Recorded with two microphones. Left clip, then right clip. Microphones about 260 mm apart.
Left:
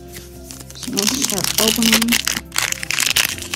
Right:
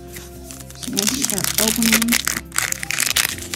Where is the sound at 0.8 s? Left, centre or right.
Centre.